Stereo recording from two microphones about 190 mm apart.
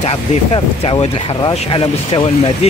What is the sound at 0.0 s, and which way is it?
Speech, 30° left (ahead or behind).